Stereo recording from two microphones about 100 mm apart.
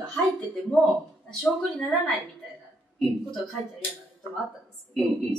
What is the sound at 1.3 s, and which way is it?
Speech, 5° left (ahead or behind).